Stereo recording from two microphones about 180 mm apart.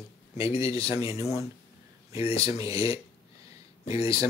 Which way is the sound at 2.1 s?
30° left (ahead or behind).